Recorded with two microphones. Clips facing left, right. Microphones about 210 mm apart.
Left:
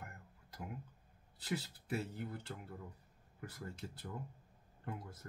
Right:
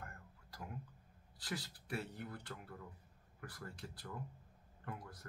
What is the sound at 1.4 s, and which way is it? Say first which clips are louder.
Speech: left 4 dB; 25° left (ahead or behind).